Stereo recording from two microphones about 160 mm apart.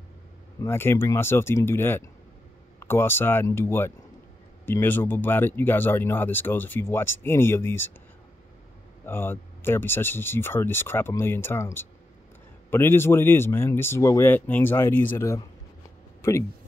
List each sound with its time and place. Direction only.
0.6 s speech: 15° left (ahead or behind)
9.0 s speech: 15° left (ahead or behind)